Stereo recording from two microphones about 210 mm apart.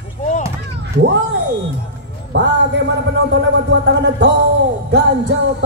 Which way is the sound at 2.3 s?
55° right (ahead or behind).